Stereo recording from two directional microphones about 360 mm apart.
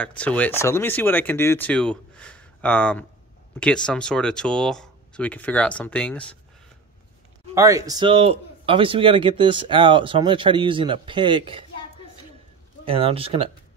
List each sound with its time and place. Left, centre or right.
0.0 s speech: centre
7.5 s speech: centre
12.8 s speech: centre